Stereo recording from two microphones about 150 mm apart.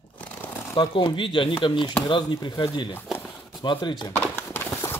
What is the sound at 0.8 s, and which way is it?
Speech, 35° left (ahead or behind).